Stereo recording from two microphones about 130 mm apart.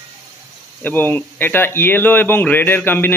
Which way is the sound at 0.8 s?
15° left (ahead or behind).